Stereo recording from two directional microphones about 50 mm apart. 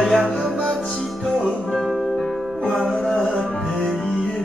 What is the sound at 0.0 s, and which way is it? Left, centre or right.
Music, centre.